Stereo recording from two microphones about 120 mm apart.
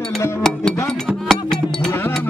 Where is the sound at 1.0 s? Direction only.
Centre (ahead or behind).